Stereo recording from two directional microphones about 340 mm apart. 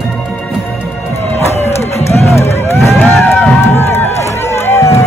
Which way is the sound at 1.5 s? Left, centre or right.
Centre.